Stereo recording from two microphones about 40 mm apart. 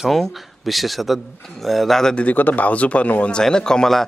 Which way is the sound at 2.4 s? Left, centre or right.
Left.